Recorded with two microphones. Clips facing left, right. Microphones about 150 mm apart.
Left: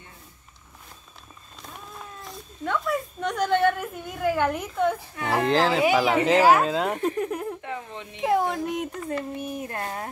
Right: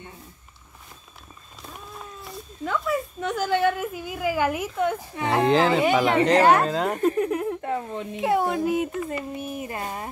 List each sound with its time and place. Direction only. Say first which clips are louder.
1.6 s a sound: right 1 dB; 5° right (ahead or behind)
5.3 s a woman's voice: right 2 dB; centre (ahead or behind)
7.9 s speech: right 7 dB; 45° right (ahead or behind)
8.2 s a woman's voice: right 1 dB; centre (ahead or behind)